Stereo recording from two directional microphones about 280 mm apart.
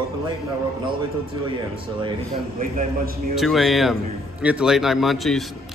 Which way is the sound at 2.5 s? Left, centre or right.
Right.